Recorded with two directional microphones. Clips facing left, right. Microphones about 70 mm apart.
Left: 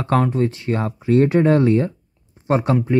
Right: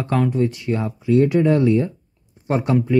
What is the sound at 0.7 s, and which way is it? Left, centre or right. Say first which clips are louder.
Speech: left 1 dB; left.